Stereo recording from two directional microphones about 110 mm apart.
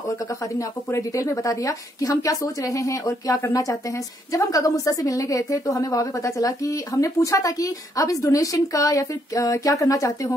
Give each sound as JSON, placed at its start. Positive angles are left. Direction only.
{"t": 0.6, "sound": "a woman's voice", "side_deg": 30}